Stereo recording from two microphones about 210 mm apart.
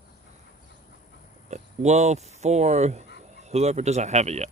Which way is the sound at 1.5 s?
35° right (ahead or behind).